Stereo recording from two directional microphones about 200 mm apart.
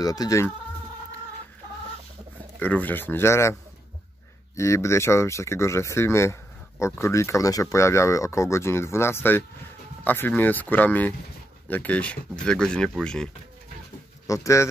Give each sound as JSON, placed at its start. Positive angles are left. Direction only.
{"t": 0.0, "sound": "speech", "side_deg": 20}
{"t": 2.6, "sound": "speech", "side_deg": 10}
{"t": 4.6, "sound": "speech", "side_deg": 15}
{"t": 14.2, "sound": "speech", "side_deg": 15}